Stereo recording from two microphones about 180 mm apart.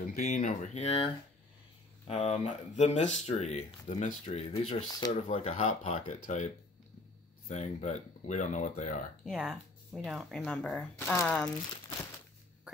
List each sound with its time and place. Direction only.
0.0 s speech: 40° left (ahead or behind)
9.2 s speech: 5° right (ahead or behind)